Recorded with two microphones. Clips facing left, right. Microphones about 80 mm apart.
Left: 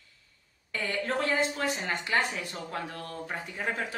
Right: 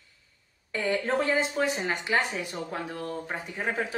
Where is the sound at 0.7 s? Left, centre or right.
Right.